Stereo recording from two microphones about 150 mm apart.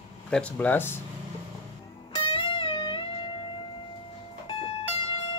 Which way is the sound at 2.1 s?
35° left (ahead or behind).